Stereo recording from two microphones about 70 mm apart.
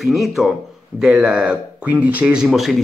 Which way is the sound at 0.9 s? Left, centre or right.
Centre.